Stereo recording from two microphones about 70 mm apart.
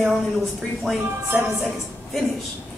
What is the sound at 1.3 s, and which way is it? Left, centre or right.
Speech, centre.